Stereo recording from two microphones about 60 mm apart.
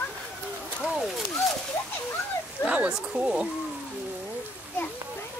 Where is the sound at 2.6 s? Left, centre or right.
Centre.